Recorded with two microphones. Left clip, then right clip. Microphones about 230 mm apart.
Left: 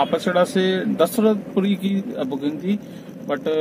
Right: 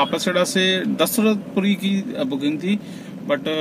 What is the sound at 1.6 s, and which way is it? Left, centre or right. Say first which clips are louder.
A man's voice: right 1 dB; centre.